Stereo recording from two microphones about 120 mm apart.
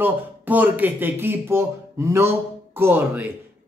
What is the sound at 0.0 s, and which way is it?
Speech, 15° right (ahead or behind).